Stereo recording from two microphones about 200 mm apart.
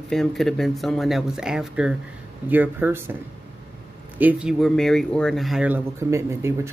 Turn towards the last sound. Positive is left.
turn(degrees=-15)  # may be behind; listen again after turning